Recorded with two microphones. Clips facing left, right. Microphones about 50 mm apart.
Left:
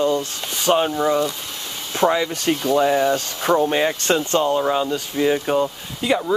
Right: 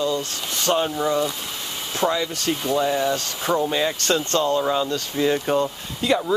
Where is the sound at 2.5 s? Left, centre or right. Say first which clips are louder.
Left 4 dB; centre.